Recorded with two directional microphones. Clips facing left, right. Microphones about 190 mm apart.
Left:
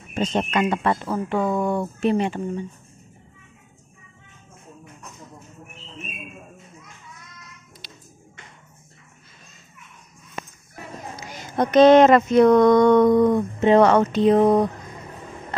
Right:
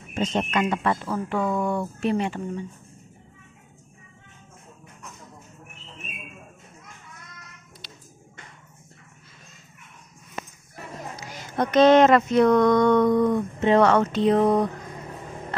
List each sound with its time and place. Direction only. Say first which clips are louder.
0.1 s speech: left 2 dB; 35° left (ahead or behind)
11.1 s speech: left 3 dB; 20° left (ahead or behind)